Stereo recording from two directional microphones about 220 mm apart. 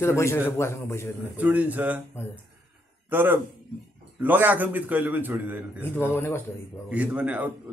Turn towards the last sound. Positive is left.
turn(degrees=-5)  # may be behind; listen again after turning